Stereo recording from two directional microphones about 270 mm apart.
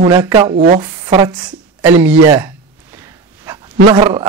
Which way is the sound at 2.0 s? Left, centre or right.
Centre.